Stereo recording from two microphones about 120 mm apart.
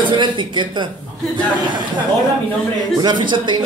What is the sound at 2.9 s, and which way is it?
Speech, 40° right (ahead or behind).